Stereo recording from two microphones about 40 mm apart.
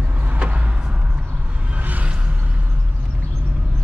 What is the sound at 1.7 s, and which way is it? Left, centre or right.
Music, right.